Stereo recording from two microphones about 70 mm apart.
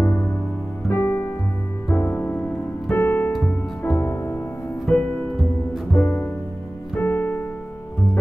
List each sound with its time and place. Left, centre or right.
0.0 s music: centre
0.8 s music: left
4.9 s music: centre
7.0 s piano: left